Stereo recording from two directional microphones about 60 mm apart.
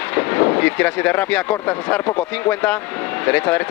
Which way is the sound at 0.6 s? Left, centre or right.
Left.